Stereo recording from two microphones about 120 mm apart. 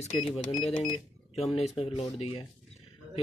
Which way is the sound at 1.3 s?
55° left (ahead or behind).